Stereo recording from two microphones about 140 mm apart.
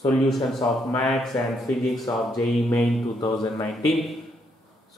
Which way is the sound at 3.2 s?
25° left (ahead or behind).